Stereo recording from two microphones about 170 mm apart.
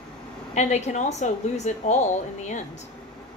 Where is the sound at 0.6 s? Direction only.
40° left (ahead or behind).